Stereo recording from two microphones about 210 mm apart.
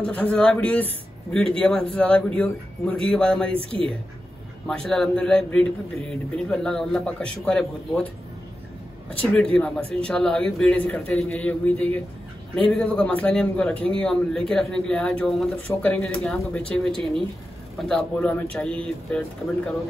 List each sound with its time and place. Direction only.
0.0 s a man's voice: 5° left (ahead or behind)
3.5 s speech: 25° right (ahead or behind)
4.6 s a man's voice: centre (ahead or behind)
9.3 s a man's voice: centre (ahead or behind)